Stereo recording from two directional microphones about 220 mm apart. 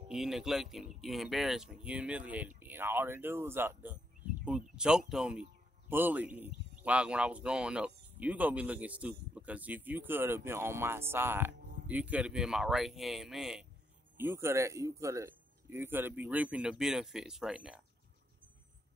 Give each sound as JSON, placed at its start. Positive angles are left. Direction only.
{"t": 0.1, "sound": "speech", "side_deg": 0}